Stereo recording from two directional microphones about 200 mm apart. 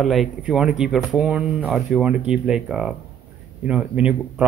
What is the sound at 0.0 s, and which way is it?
Speech, centre (ahead or behind).